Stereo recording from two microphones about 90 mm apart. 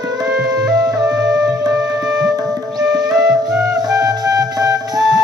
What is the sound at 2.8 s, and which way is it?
Music, 10° right (ahead or behind).